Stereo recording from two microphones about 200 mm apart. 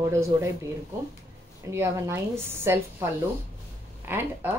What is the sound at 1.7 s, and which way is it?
Speech, 15° right (ahead or behind).